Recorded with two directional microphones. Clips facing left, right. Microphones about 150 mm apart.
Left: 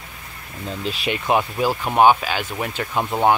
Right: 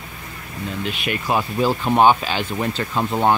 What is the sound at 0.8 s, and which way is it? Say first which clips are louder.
Speech: left 3 dB; 35° left (ahead or behind).